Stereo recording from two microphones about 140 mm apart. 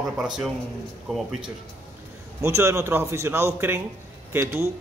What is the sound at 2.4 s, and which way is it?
A man's voice, 20° right (ahead or behind).